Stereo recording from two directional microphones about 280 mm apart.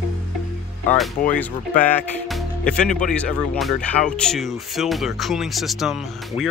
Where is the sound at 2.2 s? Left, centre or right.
Centre.